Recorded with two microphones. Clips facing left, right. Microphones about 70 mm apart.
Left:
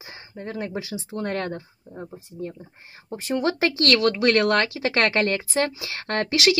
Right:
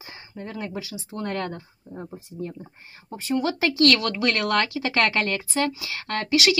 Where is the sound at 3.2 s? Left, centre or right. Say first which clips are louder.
Left 1 dB; left.